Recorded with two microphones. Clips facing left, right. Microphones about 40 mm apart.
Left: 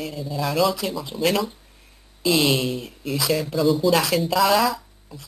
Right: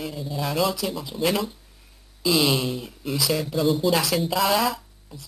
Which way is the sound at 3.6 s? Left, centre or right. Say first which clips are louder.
Left 3 dB; centre.